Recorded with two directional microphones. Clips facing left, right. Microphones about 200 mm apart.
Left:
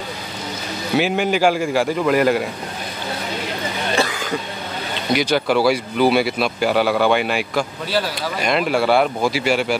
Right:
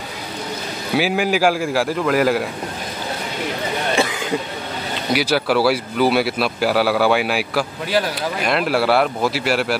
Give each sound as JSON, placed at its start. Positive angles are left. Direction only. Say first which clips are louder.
{"t": 0.9, "sound": "a man's voice", "louder": "even", "side_deg": -5}
{"t": 4.0, "sound": "throat clearing", "louder": "right 1 dB", "side_deg": -20}
{"t": 5.1, "sound": "a man's voice", "louder": "even", "side_deg": -5}